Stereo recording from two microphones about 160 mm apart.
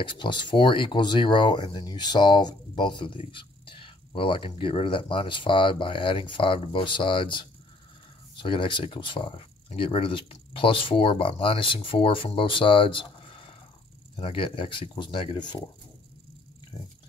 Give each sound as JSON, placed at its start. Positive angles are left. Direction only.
{"t": 0.0, "sound": "speech", "side_deg": 30}